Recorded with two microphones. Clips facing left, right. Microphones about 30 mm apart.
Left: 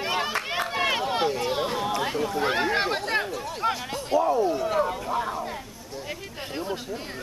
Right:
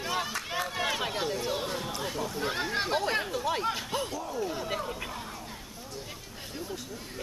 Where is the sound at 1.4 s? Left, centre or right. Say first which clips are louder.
Left 6 dB; left.